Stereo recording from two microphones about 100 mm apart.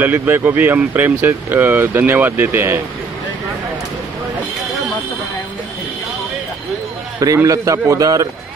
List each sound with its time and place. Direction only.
0.0 s speech: 20° right (ahead or behind)
7.4 s a man's voice: 35° right (ahead or behind)